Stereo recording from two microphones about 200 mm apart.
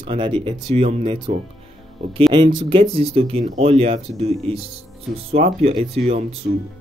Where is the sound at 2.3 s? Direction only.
25° right (ahead or behind).